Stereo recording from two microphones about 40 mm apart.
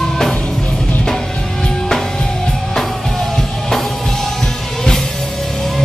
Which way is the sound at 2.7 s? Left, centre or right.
Centre.